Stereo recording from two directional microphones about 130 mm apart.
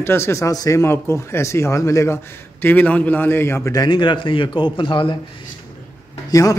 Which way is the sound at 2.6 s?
15° left (ahead or behind).